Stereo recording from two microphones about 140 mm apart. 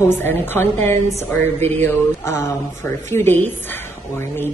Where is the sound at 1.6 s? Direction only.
55° right (ahead or behind).